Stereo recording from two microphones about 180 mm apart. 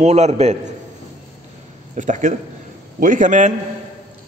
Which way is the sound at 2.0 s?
45° right (ahead or behind).